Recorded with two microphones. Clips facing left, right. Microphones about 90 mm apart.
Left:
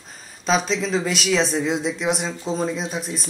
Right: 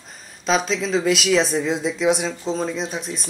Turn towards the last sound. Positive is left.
turn(degrees=0)  # may be behind; listen again after turning